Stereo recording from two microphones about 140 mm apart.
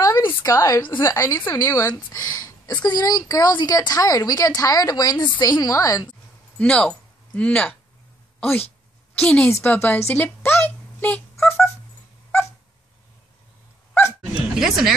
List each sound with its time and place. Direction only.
0.0 s a sound: 25° left (ahead or behind)
1.0 s a woman's voice: 20° left (ahead or behind)
6.6 s speech: 5° left (ahead or behind)
9.1 s a woman's voice: 10° left (ahead or behind)
14.5 s speech: 5° right (ahead or behind)